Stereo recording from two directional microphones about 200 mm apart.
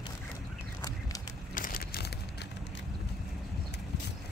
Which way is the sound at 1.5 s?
45° left (ahead or behind).